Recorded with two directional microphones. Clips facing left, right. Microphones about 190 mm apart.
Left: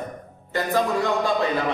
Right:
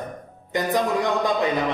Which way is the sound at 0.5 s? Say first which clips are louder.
Even; 15° right (ahead or behind).